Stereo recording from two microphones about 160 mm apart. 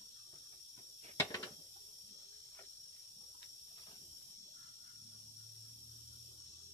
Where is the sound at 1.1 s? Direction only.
20° left (ahead or behind).